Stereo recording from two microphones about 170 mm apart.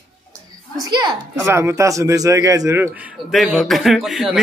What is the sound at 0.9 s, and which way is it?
A child's voice, 25° right (ahead or behind).